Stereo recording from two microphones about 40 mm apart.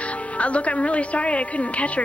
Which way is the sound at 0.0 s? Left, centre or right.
Left.